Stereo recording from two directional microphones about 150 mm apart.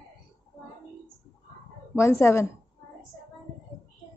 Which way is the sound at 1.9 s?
20° left (ahead or behind).